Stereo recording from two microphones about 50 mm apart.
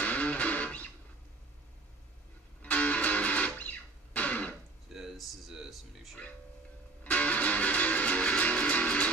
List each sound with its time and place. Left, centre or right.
0.0 s music: left
2.6 s music: left
4.8 s a sound: centre
7.0 s music: left